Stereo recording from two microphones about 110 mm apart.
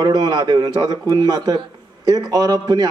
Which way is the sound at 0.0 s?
35° right (ahead or behind).